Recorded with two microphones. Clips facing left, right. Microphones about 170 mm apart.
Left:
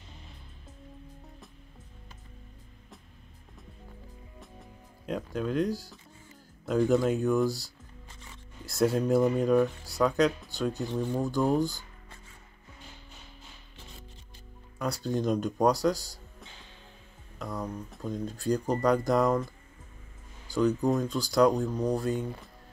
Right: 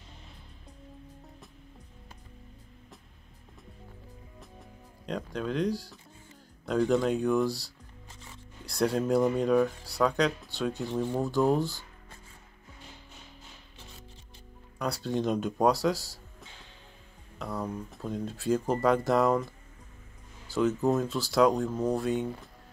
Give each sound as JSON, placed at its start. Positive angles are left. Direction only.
{"t": 4.4, "sound": "music", "side_deg": 0}
{"t": 6.6, "sound": "speech", "side_deg": 0}
{"t": 14.8, "sound": "speech", "side_deg": 0}